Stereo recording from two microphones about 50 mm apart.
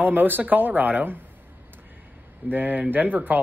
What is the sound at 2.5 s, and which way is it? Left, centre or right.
Speech, right.